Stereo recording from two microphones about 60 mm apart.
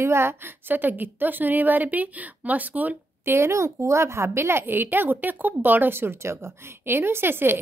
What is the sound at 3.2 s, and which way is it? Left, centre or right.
A woman's voice, right.